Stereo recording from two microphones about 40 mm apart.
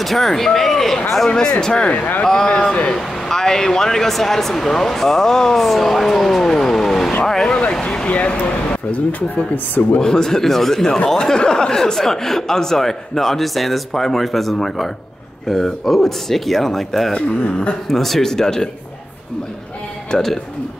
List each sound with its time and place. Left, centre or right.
0.0 s speech: centre
1.3 s speech: centre
2.5 s speech: left
2.9 s speech: centre
7.8 s a sound: left
8.1 s speech: left
9.9 s speech: centre
17.1 s speech: left
17.8 s speech: centre
20.1 s speech: centre